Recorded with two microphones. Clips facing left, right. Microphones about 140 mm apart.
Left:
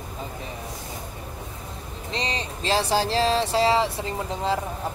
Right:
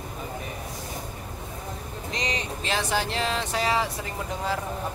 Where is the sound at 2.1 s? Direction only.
30° left (ahead or behind).